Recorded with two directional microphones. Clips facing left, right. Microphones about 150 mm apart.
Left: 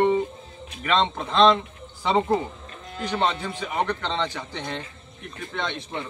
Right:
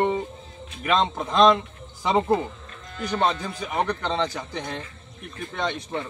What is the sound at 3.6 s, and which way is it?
Speech, 10° right (ahead or behind).